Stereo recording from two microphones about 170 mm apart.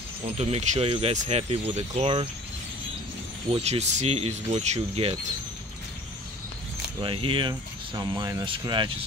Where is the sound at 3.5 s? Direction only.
40° right (ahead or behind).